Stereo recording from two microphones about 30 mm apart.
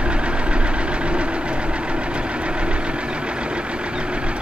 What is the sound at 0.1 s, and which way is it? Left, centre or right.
Vehicle, right.